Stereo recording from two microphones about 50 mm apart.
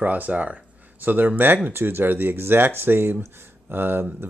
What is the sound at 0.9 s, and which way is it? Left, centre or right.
Speech, right.